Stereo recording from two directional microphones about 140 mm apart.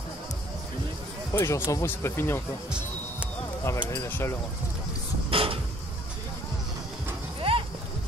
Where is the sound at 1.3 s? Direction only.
20° left (ahead or behind).